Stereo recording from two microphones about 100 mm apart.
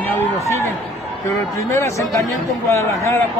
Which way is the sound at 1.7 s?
30° left (ahead or behind).